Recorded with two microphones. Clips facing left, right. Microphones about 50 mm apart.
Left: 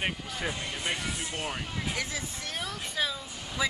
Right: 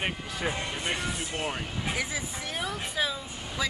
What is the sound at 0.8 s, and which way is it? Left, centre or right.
Speech, centre.